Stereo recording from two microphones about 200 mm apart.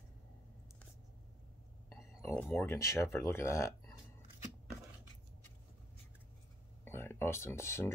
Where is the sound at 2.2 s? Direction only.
10° left (ahead or behind).